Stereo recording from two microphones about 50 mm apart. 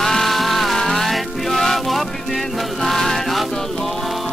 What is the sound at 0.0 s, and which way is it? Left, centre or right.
Music, centre.